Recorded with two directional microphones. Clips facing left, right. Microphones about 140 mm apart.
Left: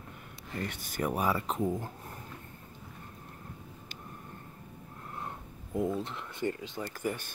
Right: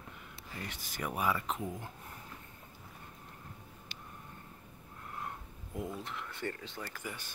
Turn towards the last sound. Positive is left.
turn(degrees=50)  # may be behind; listen again after turning